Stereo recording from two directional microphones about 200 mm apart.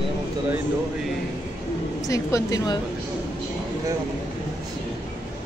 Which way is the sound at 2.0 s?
15° left (ahead or behind).